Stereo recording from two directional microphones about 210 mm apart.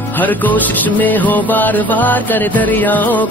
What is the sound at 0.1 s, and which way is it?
Music, 10° left (ahead or behind).